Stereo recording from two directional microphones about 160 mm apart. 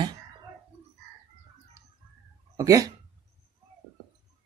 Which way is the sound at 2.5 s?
20° right (ahead or behind).